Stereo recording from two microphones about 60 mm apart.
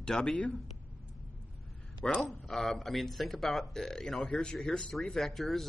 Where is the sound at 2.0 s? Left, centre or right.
Centre.